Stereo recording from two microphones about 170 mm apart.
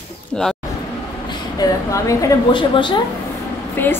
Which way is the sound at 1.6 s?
20° left (ahead or behind).